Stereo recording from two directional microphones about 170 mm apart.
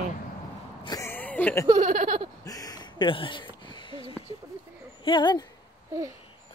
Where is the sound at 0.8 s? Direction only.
20° left (ahead or behind).